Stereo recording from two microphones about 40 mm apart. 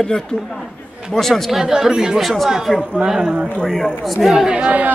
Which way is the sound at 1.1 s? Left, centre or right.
Centre.